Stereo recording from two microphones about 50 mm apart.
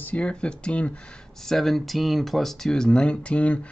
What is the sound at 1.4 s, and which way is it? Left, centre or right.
Speech, centre.